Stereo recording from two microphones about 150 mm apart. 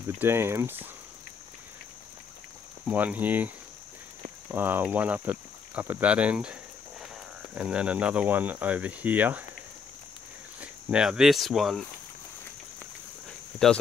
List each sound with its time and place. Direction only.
0.2 s speech: 15° right (ahead or behind)
2.9 s speech: 10° right (ahead or behind)
10.6 s speech: 5° right (ahead or behind)
13.6 s speech: 5° left (ahead or behind)